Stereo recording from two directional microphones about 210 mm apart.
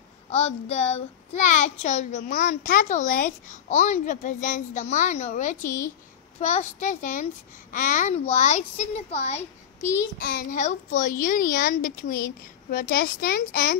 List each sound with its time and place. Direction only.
0.3 s a child's voice: 30° left (ahead or behind)
5.6 s a woman's voice: 15° left (ahead or behind)
6.4 s a child's voice: 35° left (ahead or behind)